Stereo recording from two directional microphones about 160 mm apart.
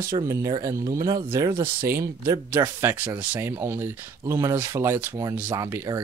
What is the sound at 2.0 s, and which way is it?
Speech, 20° right (ahead or behind).